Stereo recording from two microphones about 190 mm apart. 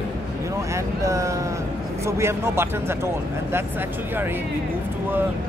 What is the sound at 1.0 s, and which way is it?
Speech, 15° right (ahead or behind).